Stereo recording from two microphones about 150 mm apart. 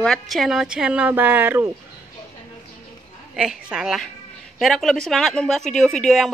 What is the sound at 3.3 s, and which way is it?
A woman's voice, 5° right (ahead or behind).